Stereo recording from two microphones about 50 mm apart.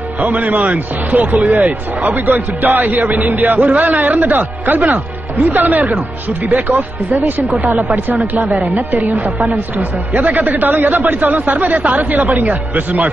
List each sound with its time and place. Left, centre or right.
0.2 s a man's voice: right
8.4 s a man's voice: right